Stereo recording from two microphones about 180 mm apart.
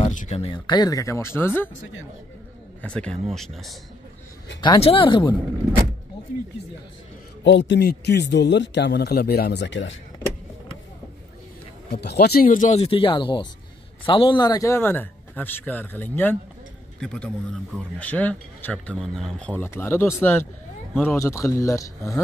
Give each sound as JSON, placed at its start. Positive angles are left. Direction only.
{"t": 0.0, "sound": "speech", "side_deg": 40}
{"t": 2.8, "sound": "speech", "side_deg": 5}
{"t": 4.6, "sound": "speech", "side_deg": 25}
{"t": 7.4, "sound": "speech", "side_deg": 80}
{"t": 11.9, "sound": "speech", "side_deg": 65}